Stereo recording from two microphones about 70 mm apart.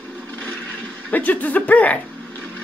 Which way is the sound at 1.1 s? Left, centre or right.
Left.